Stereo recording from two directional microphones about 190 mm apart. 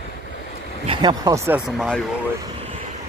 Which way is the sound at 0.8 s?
25° right (ahead or behind).